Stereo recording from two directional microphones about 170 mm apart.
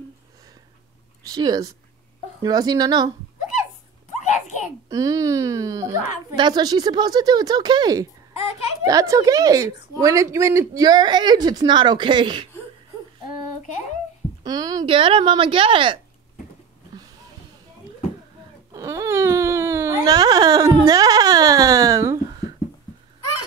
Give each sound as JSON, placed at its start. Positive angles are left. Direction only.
{"t": 1.2, "sound": "a woman's voice", "side_deg": -25}
{"t": 4.8, "sound": "a woman's voice", "side_deg": -20}
{"t": 14.4, "sound": "a woman's voice", "side_deg": -25}
{"t": 18.7, "sound": "wail", "side_deg": -20}